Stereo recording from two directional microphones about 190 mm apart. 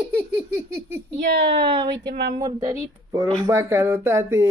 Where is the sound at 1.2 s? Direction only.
60° right (ahead or behind).